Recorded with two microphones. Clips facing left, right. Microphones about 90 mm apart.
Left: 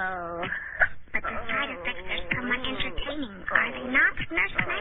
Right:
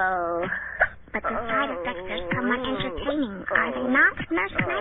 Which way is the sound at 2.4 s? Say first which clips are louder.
Right 7 dB; 30° right (ahead or behind).